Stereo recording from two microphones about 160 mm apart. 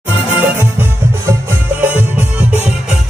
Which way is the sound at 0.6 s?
15° right (ahead or behind).